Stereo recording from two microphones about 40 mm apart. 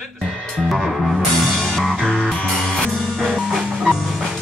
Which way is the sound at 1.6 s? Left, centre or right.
Centre.